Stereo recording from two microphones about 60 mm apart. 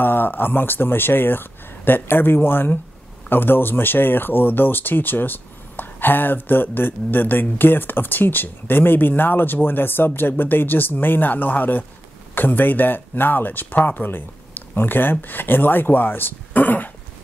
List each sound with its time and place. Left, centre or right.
0.0 s speech: left